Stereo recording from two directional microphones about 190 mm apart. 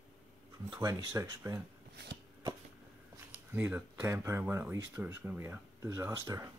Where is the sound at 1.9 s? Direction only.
60° right (ahead or behind).